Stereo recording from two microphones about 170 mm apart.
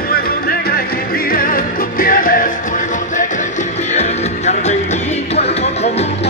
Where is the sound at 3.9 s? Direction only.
40° left (ahead or behind).